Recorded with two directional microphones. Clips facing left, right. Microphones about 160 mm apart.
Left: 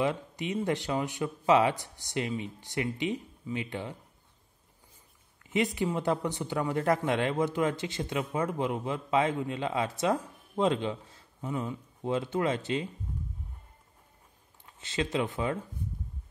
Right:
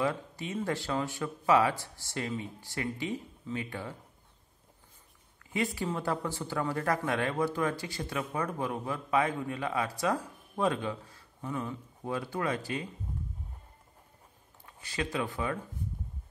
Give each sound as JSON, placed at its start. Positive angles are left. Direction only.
{"t": 0.0, "sound": "speech", "side_deg": 20}
{"t": 5.5, "sound": "speech", "side_deg": 20}
{"t": 14.7, "sound": "speech", "side_deg": 25}